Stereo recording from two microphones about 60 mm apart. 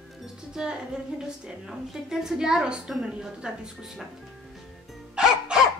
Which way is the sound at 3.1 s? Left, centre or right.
Centre.